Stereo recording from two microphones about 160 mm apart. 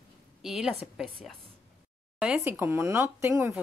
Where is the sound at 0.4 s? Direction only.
5° right (ahead or behind).